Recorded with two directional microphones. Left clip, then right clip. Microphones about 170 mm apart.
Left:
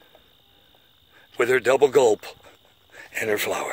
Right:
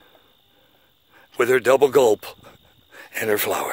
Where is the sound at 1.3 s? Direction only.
60° right (ahead or behind).